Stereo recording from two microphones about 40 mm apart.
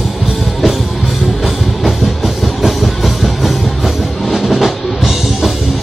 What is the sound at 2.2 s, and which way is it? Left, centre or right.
Music, centre.